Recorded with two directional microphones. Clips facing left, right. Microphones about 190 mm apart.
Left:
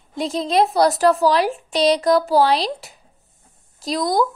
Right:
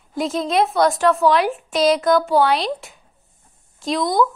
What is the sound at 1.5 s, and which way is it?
Speech, centre (ahead or behind).